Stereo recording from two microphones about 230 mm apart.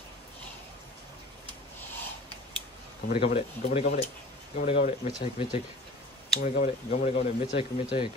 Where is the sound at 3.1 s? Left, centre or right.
Left.